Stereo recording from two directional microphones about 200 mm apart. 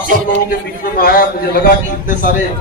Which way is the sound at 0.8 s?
45° left (ahead or behind).